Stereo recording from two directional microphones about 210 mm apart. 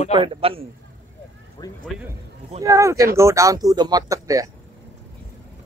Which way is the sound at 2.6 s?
15° right (ahead or behind).